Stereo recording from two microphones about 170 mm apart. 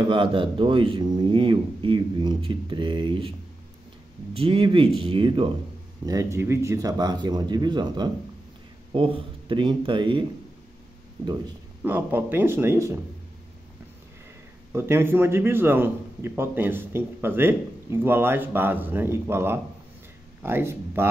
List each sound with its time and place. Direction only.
0.1 s speech: 30° right (ahead or behind)
6.0 s speech: 20° right (ahead or behind)
11.8 s a man's voice: 10° right (ahead or behind)
14.7 s a man's voice: 15° right (ahead or behind)